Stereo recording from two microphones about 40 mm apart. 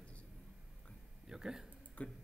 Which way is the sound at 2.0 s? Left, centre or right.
Left.